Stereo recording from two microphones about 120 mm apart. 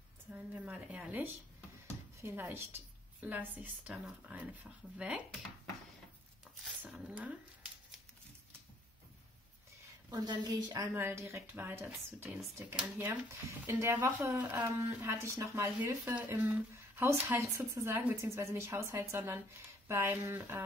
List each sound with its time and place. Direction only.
0.3 s a woman's voice: 10° right (ahead or behind)
6.9 s a woman's voice: 10° right (ahead or behind)
10.0 s a woman's voice: 35° right (ahead or behind)
11.0 s speech: 20° right (ahead or behind)